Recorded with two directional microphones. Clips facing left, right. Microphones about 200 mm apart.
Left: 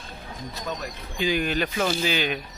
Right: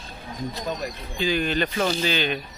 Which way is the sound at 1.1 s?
15° left (ahead or behind).